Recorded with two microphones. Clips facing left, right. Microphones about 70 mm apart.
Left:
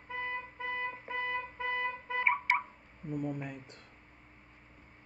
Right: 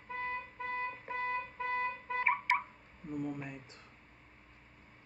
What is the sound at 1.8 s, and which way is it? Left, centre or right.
Music, left.